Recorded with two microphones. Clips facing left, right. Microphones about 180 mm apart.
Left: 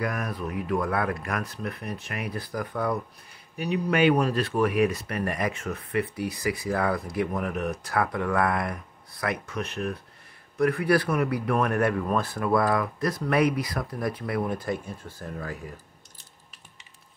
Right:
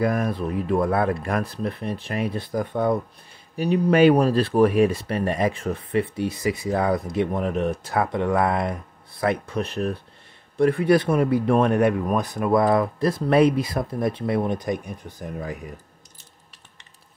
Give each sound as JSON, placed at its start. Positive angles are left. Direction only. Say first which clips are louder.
{"t": 0.0, "sound": "speech", "louder": "right 7 dB", "side_deg": -30}